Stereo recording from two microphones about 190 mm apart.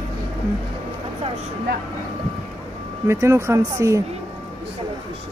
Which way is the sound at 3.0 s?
15° right (ahead or behind).